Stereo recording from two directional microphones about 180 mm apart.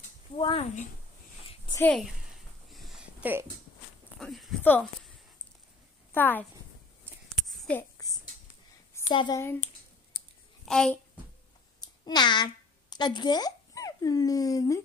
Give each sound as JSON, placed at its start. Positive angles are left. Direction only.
{"t": 0.4, "sound": "speech", "side_deg": 25}
{"t": 1.9, "sound": "a sound", "side_deg": 0}
{"t": 4.2, "sound": "speech", "side_deg": 0}
{"t": 6.1, "sound": "a woman's voice", "side_deg": 10}
{"t": 7.4, "sound": "a sound", "side_deg": 0}
{"t": 9.1, "sound": "speech", "side_deg": 25}
{"t": 10.6, "sound": "a child's voice", "side_deg": 5}
{"t": 12.0, "sound": "speech", "side_deg": 25}